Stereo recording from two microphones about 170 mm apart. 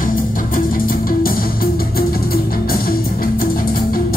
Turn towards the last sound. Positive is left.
turn(degrees=60)  # may be behind; listen again after turning